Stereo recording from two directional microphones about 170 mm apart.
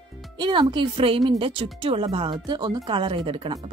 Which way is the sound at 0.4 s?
30° right (ahead or behind).